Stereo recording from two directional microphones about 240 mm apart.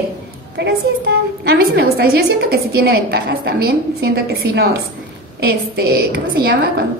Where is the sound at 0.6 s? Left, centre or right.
Right.